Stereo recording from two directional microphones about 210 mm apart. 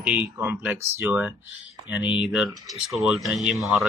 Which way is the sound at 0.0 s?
5° right (ahead or behind).